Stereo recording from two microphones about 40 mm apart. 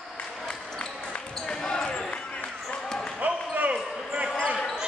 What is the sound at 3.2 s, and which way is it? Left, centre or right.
Basketball bounce, right.